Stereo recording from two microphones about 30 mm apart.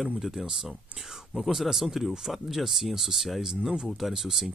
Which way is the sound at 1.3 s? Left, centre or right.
Centre.